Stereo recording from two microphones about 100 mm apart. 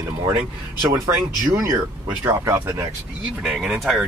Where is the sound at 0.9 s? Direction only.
30° right (ahead or behind).